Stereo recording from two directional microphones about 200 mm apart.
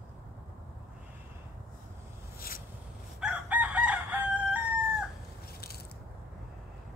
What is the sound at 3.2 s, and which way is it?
Chicken, 5° right (ahead or behind).